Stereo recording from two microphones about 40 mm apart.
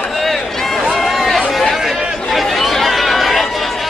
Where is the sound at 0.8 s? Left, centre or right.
Centre.